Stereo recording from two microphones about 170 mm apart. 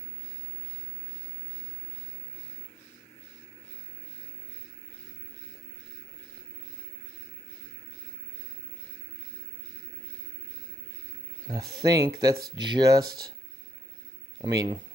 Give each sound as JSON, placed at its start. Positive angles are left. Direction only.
{"t": 11.5, "sound": "speech", "side_deg": -20}
{"t": 14.4, "sound": "speech", "side_deg": -25}